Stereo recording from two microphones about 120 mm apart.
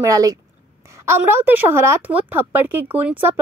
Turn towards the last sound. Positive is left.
turn(degrees=-15)  # may be behind; listen again after turning